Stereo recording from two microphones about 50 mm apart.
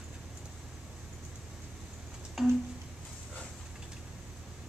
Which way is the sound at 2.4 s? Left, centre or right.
Centre.